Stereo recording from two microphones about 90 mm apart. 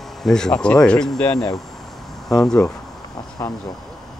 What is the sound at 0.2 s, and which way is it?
Speech, 5° left (ahead or behind).